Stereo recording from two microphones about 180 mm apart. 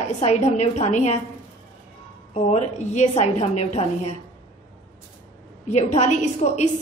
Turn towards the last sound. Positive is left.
turn(degrees=40)  # may be behind; listen again after turning